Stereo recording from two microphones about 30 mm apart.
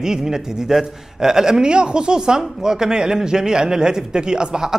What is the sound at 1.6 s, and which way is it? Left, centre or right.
A man's voice, right.